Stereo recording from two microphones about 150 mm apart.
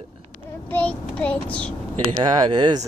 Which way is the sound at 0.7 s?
10° left (ahead or behind).